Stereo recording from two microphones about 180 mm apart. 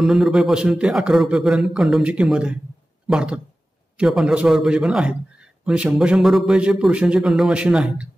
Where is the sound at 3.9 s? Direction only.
5° right (ahead or behind).